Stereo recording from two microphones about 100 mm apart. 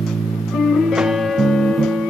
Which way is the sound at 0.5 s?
5° right (ahead or behind).